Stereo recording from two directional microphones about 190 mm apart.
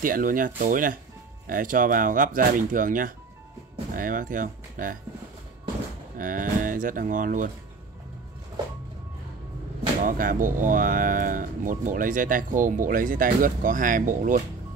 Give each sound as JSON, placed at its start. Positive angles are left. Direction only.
{"t": 0.0, "sound": "speech", "side_deg": -45}
{"t": 6.1, "sound": "speech", "side_deg": -45}
{"t": 10.0, "sound": "speech", "side_deg": -45}